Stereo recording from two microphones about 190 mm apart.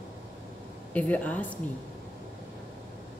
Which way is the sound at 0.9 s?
5° left (ahead or behind).